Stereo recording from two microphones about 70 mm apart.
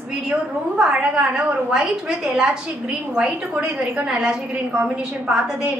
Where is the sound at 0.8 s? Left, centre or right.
Centre.